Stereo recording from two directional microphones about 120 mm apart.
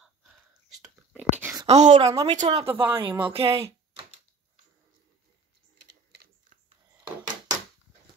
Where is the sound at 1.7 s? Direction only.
75° right (ahead or behind).